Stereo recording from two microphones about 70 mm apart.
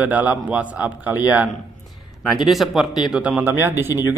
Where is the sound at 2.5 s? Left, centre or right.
Centre.